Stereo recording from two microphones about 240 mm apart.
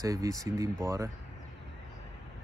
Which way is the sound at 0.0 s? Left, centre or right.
Centre.